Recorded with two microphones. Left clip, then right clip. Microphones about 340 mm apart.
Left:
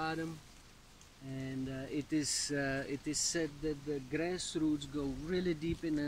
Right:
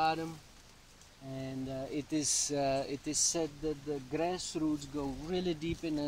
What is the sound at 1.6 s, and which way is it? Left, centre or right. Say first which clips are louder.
Speech: right 3 dB; right.